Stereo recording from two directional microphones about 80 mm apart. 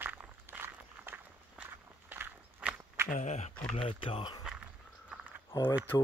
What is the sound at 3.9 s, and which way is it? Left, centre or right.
Speech, left.